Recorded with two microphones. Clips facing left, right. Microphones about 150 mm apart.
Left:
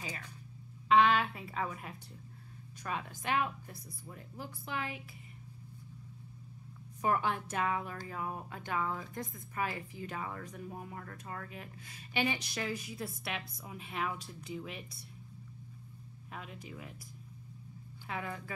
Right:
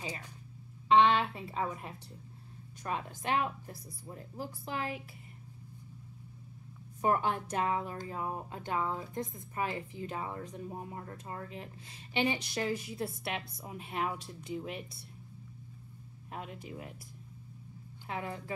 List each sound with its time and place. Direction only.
0.8 s speech: 25° right (ahead or behind)
7.0 s speech: 35° right (ahead or behind)
13.7 s a woman's voice: 45° right (ahead or behind)
14.1 s speech: 25° right (ahead or behind)
16.3 s a woman's voice: 40° right (ahead or behind)
18.0 s speech: 30° right (ahead or behind)